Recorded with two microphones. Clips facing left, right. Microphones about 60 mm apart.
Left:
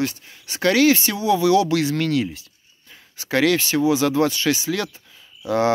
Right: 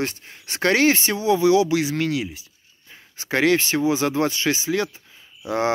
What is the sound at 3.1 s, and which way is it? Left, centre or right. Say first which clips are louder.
Speech: even; right.